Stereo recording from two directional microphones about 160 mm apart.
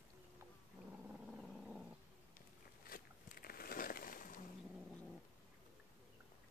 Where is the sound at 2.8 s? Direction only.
65° left (ahead or behind).